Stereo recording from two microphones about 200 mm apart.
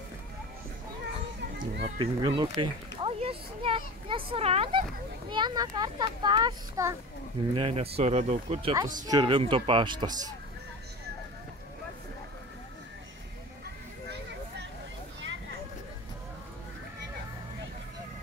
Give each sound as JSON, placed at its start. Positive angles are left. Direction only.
{"t": 1.6, "sound": "a sound", "side_deg": -40}
{"t": 2.0, "sound": "a child's voice", "side_deg": -25}
{"t": 7.5, "sound": "speech", "side_deg": -30}
{"t": 8.7, "sound": "a child's voice", "side_deg": -20}